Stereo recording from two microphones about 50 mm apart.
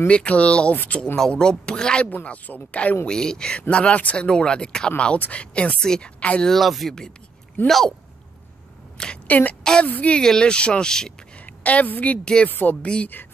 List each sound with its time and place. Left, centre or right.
0.1 s speech: left
2.2 s speech: left
3.1 s speech: centre
6.1 s speech: left
6.4 s speech: centre
8.9 s a sound: centre
9.3 s speech: left
9.6 s a woman's voice: centre
9.8 s speech: left
10.1 s speech: centre
11.6 s speech: left
12.8 s speech: left